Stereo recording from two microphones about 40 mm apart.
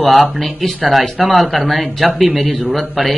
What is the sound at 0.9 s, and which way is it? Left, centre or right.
A man's voice, centre.